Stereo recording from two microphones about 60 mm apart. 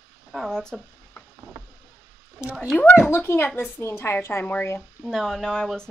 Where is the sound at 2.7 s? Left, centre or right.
Left.